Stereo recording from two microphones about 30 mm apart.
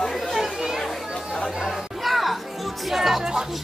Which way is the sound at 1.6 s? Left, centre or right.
Centre.